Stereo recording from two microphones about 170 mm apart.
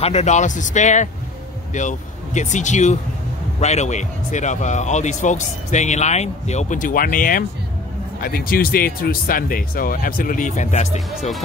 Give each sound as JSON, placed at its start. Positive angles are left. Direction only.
{"t": 0.0, "sound": "speech", "side_deg": 40}
{"t": 11.1, "sound": "speech", "side_deg": 0}